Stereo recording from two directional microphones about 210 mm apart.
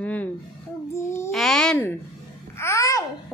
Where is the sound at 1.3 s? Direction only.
Centre (ahead or behind).